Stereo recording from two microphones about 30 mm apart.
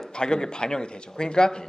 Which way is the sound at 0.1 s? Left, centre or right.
Left.